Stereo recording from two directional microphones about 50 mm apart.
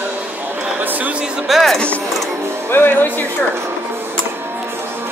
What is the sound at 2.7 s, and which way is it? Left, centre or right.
Music, left.